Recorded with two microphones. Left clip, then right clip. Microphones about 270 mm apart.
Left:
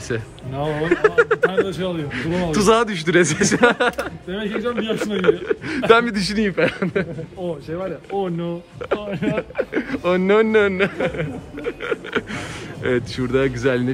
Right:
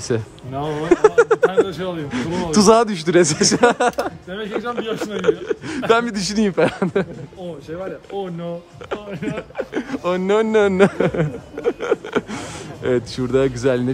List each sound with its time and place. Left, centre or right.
0.1 s speech: right
2.5 s speech: centre
8.4 s speech: centre
10.8 s speech: right